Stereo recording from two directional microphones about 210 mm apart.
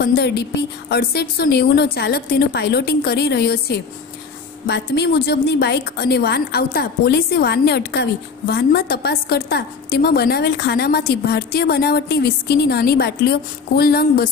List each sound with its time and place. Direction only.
0.0 s a woman's voice: 50° left (ahead or behind)